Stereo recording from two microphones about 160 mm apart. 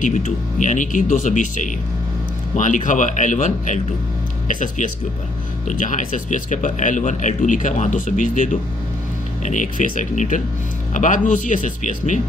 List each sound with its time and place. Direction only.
0.0 s speech: 50° left (ahead or behind)